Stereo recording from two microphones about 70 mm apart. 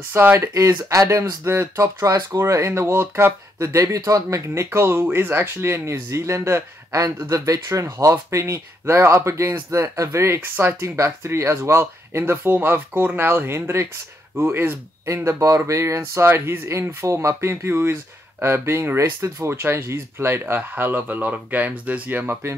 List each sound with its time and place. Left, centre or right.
0.1 s speech: right
4.6 s speech: right
7.8 s speech: right
15.2 s speech: right
16.0 s speech: right